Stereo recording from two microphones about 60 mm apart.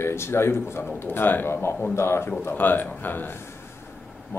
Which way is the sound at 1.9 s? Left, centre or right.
Left.